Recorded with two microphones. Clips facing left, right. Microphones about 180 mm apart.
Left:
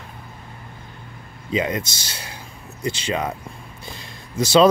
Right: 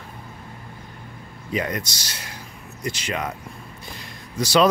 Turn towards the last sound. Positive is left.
turn(degrees=25)  # may be behind; listen again after turning